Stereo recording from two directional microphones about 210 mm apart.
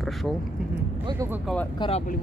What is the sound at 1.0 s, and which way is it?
Speech, 15° right (ahead or behind).